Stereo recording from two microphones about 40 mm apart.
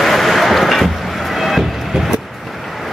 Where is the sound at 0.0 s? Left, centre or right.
Centre.